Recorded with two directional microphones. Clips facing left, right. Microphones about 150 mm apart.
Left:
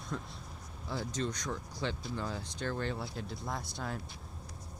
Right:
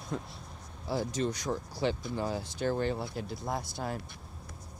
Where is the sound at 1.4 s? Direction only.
30° right (ahead or behind).